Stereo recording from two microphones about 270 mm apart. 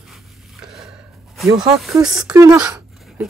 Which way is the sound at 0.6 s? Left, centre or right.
Centre.